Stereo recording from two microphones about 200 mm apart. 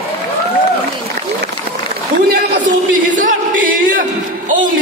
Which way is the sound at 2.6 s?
40° right (ahead or behind).